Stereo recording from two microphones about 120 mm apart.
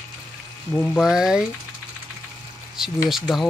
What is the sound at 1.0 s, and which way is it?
Speech, 5° right (ahead or behind).